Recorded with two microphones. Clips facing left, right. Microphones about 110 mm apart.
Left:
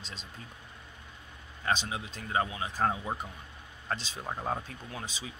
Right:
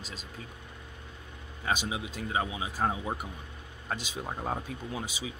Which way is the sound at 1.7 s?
15° right (ahead or behind).